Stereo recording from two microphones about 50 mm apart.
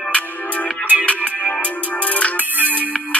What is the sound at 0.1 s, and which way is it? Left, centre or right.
Music, left.